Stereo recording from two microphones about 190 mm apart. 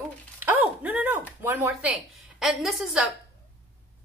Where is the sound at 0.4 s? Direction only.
10° right (ahead or behind).